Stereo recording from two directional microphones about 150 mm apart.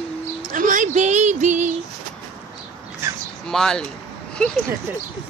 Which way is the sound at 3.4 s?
5° left (ahead or behind).